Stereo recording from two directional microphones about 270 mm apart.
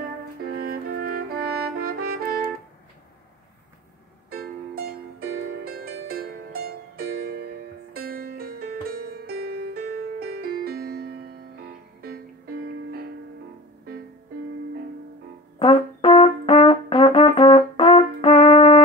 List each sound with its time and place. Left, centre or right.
0.5 s music: right
4.3 s music: right
15.6 s brass instrument: centre